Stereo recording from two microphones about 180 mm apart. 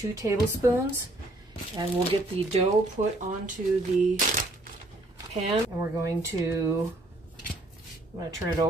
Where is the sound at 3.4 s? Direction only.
45° right (ahead or behind).